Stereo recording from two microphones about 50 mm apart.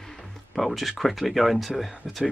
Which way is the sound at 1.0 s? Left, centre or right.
Centre.